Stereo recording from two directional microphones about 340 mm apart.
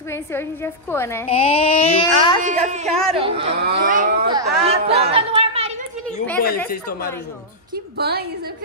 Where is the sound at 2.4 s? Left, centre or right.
Right.